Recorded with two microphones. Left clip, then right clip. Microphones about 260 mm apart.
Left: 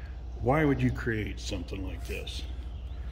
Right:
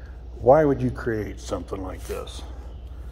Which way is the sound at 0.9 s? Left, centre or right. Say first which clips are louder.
Right 5 dB; centre.